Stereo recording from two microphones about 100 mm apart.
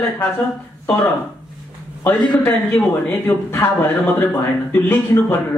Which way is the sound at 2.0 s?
20° left (ahead or behind).